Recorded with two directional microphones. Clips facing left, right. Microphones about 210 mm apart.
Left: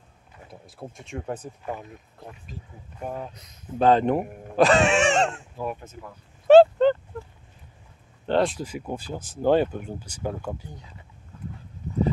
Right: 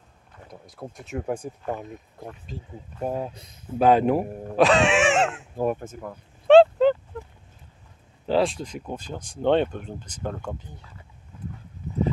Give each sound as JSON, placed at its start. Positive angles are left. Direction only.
{"t": 0.5, "sound": "speech", "side_deg": 5}
{"t": 2.5, "sound": "speech", "side_deg": -25}
{"t": 3.7, "sound": "speech", "side_deg": -10}
{"t": 5.6, "sound": "speech", "side_deg": -45}
{"t": 6.4, "sound": "a sound", "side_deg": 0}
{"t": 8.3, "sound": "speech", "side_deg": 0}